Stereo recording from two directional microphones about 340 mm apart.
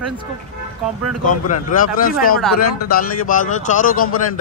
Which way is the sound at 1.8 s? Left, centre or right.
Left.